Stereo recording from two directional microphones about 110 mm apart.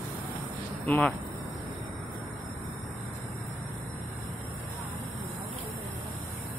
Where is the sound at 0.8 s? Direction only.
10° left (ahead or behind).